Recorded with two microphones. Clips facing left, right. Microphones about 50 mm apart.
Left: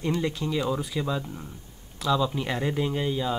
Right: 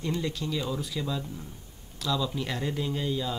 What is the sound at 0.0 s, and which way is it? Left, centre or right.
Speech, left.